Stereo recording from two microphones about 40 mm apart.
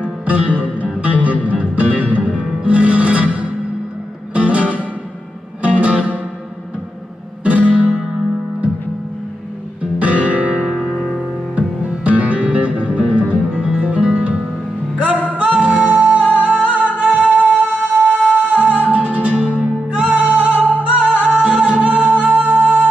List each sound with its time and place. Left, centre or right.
0.0 s music: right
1.5 s music: right
7.4 s music: right
9.9 s music: right
10.9 s music: centre
11.5 s music: right